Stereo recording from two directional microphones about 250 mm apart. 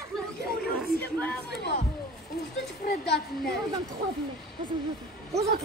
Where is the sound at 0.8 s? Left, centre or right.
Centre.